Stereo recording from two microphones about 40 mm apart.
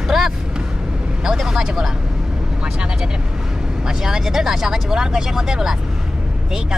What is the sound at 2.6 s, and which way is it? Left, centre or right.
Speech, centre.